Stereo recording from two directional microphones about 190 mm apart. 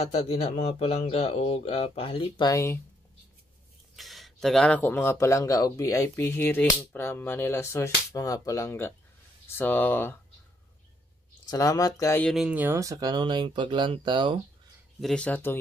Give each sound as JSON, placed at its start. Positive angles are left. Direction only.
{"t": 0.0, "sound": "speech", "side_deg": 30}
{"t": 3.9, "sound": "speech", "side_deg": 0}
{"t": 11.4, "sound": "speech", "side_deg": 20}
{"t": 12.3, "sound": "speech", "side_deg": -5}
{"t": 15.0, "sound": "speech", "side_deg": 5}